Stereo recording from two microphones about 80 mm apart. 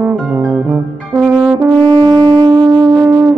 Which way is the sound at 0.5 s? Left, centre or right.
Right.